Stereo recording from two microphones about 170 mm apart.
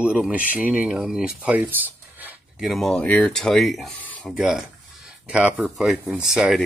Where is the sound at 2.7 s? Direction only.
Centre (ahead or behind).